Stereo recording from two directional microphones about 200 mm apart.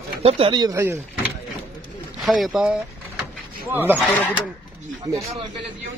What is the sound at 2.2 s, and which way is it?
Speech, centre (ahead or behind).